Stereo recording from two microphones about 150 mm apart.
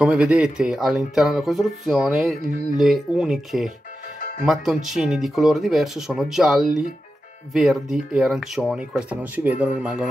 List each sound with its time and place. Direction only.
0.0 s speech: 5° right (ahead or behind)
4.2 s music: 60° left (ahead or behind)
4.8 s speech: centre (ahead or behind)